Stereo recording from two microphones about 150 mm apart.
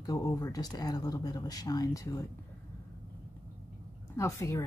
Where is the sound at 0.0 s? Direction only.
25° left (ahead or behind).